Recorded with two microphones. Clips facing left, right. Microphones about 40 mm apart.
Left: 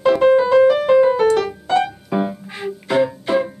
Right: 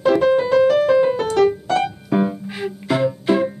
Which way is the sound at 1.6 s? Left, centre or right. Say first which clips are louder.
Left 2 dB; left.